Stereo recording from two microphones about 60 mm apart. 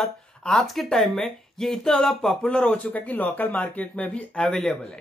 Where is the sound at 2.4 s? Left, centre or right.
Centre.